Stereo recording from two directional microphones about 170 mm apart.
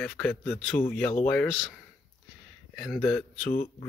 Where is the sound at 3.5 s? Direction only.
50° left (ahead or behind).